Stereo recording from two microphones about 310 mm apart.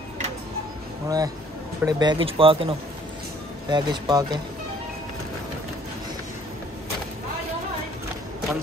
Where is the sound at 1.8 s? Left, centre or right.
Centre.